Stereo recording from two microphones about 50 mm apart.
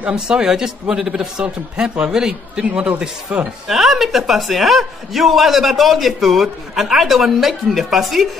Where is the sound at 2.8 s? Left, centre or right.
Right.